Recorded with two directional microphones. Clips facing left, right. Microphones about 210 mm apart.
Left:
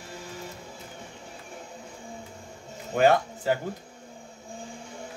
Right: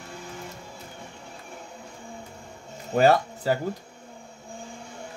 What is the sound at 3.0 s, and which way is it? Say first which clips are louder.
Speech: right 1 dB; 40° right (ahead or behind).